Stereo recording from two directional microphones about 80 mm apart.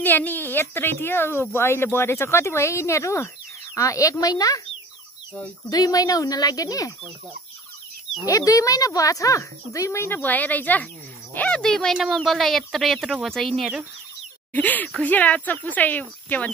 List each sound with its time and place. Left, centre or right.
0.0 s speech: left
5.7 s speech: left
8.3 s speech: left; by 13.7 s centre
14.5 s speech: left